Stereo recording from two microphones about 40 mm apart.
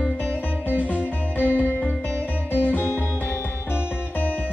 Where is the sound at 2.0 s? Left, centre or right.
Left.